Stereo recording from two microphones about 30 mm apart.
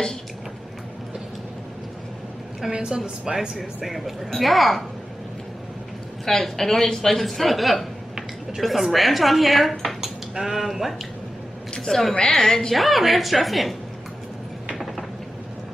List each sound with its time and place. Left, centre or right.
2.7 s a woman's voice: right
3.3 s speech: centre
6.2 s a woman's voice: centre
10.3 s speech: centre
11.9 s a woman's voice: left
12.3 s a woman's voice: centre
12.7 s speech: centre